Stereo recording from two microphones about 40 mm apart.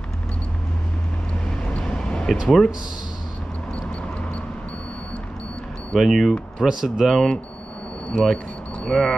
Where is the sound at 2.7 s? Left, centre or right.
Centre.